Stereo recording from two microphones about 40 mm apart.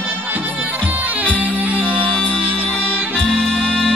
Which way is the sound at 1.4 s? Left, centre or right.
Right.